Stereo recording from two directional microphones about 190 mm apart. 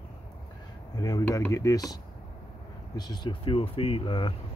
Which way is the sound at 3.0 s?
20° left (ahead or behind).